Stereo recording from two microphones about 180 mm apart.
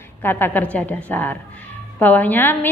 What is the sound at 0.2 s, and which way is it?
A woman's voice, 10° left (ahead or behind).